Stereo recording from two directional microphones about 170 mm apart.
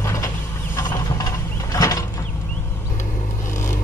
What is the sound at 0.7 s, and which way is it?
Pulleys, 20° left (ahead or behind).